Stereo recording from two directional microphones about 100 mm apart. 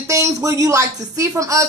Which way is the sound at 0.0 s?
35° right (ahead or behind).